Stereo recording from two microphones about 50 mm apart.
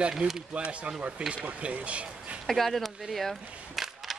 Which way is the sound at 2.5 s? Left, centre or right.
Centre.